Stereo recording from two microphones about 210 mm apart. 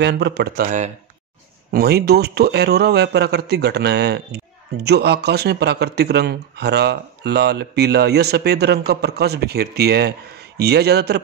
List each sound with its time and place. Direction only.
0.0 s speech: 55° right (ahead or behind)